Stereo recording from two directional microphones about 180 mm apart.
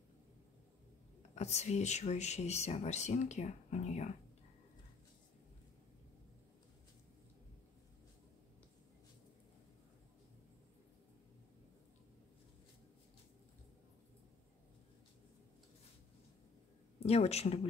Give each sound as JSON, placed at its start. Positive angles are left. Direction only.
{"t": 1.3, "sound": "speech", "side_deg": 40}
{"t": 17.0, "sound": "speech", "side_deg": 35}